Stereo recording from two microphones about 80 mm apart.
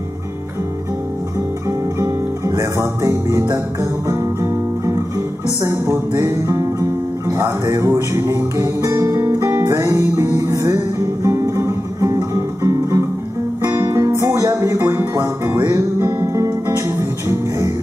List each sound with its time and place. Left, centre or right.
2.0 s music: right